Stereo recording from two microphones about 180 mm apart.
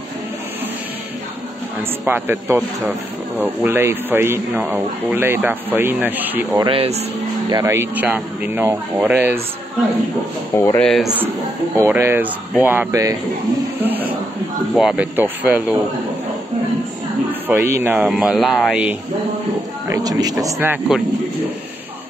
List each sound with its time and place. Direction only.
1.8 s speech: 10° right (ahead or behind)
6.6 s speech: 30° right (ahead or behind)
7.5 s speech: 15° right (ahead or behind)
10.5 s speech: 15° left (ahead or behind)
11.7 s speech: 15° right (ahead or behind)
13.7 s a sound: 10° right (ahead or behind)
14.8 s speech: 5° right (ahead or behind)
17.3 s speech: 10° right (ahead or behind)
19.9 s speech: 20° right (ahead or behind)